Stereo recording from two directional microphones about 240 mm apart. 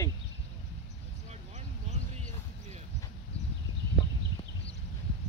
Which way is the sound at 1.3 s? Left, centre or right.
Right.